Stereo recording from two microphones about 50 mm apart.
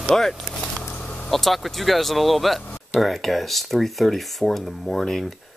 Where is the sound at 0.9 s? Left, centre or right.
Left.